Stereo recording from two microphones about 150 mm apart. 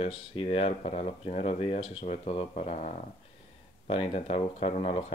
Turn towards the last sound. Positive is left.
turn(degrees=40)  # may be behind; listen again after turning